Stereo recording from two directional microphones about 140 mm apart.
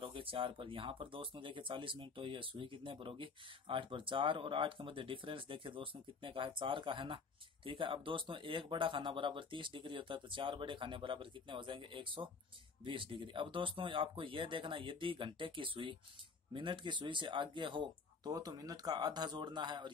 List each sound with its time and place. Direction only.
0.0 s speech: 40° right (ahead or behind)